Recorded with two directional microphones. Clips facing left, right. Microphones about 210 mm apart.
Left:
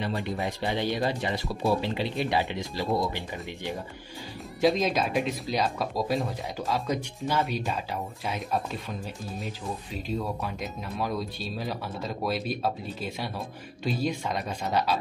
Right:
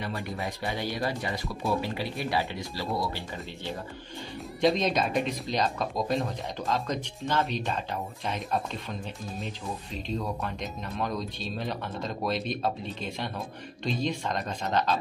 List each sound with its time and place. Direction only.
0.6 s speech: 25° left (ahead or behind)
4.6 s speech: 5° left (ahead or behind)
9.9 s speech: 5° left (ahead or behind)